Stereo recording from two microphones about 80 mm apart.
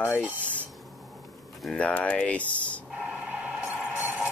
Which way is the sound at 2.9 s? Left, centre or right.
Centre.